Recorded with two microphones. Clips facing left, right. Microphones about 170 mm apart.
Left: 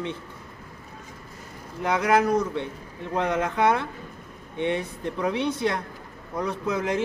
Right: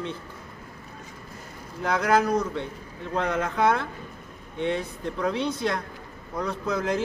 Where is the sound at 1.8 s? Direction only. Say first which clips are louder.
Left 1 dB; 20° left (ahead or behind).